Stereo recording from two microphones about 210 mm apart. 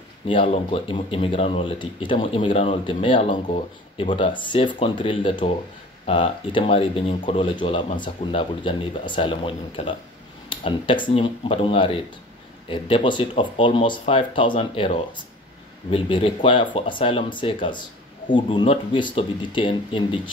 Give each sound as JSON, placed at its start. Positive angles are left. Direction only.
{"t": 0.3, "sound": "speech", "side_deg": 25}